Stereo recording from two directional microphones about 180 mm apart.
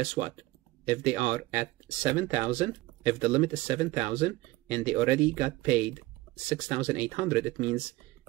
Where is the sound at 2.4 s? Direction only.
10° right (ahead or behind).